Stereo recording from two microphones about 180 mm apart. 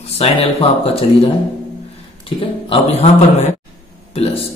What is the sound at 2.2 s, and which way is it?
A man's voice, 30° left (ahead or behind).